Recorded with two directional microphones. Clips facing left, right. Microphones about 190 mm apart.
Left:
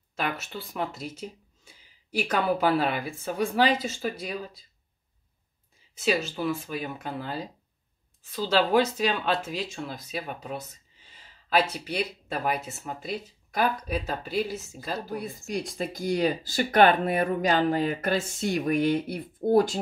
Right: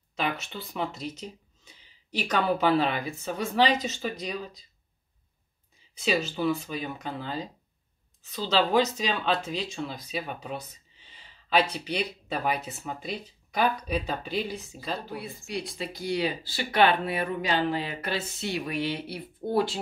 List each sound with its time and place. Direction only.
0.1 s speech: 5° left (ahead or behind)
5.9 s speech: centre (ahead or behind)
15.0 s speech: 45° left (ahead or behind)